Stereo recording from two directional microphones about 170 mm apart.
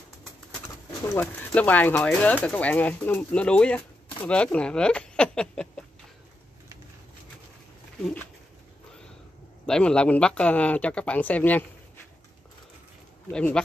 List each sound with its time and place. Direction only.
1.0 s speech: 10° left (ahead or behind)
9.7 s speech: 5° left (ahead or behind)
13.3 s speech: 5° left (ahead or behind)